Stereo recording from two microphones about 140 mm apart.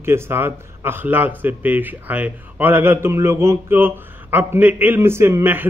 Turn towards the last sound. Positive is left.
turn(degrees=-15)  # may be behind; listen again after turning